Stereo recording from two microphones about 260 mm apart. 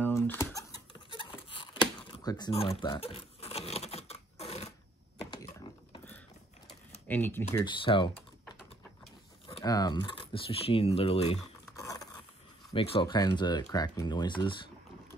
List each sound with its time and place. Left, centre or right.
0.0 s a sound: centre
7.1 s speech: centre
8.5 s typing: centre
9.5 s speech: centre
11.7 s a sound: centre
12.7 s speech: left